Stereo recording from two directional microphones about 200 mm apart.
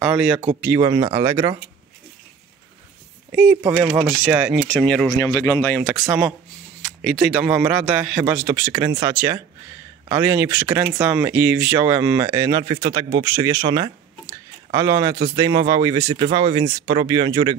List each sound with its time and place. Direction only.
0.0 s speech: 5° right (ahead or behind)
3.3 s speech: 5° right (ahead or behind)
5.1 s speech: 15° left (ahead or behind)
7.0 s speech: 5° right (ahead or behind); by 17.6 s 20° right (ahead or behind)